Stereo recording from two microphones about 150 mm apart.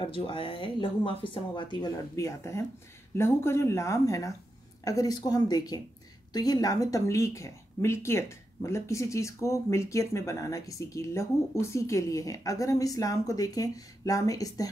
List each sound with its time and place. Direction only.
0.0 s speech: 35° left (ahead or behind)